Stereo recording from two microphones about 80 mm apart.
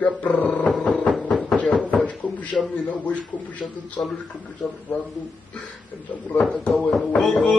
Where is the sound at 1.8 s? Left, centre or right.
Centre.